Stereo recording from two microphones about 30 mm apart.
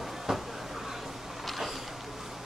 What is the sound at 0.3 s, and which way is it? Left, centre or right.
Speech, centre.